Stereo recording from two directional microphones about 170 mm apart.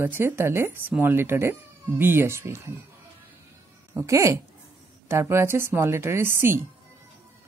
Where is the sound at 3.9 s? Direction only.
15° right (ahead or behind).